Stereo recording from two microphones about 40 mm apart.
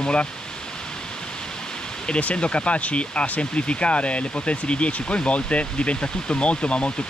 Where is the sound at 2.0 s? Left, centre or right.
Left.